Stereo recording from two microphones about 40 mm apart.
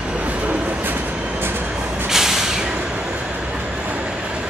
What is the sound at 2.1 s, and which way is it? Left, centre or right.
Vehicle, centre.